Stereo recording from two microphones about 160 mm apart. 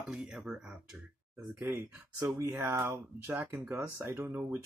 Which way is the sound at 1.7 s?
15° right (ahead or behind).